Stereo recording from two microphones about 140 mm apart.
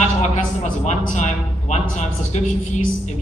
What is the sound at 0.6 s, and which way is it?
Speech, 60° left (ahead or behind).